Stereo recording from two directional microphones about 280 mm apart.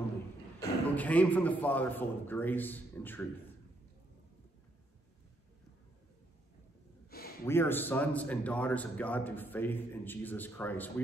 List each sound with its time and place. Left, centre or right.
0.6 s a man's voice: centre
7.1 s a sound: left
7.4 s a man's voice: centre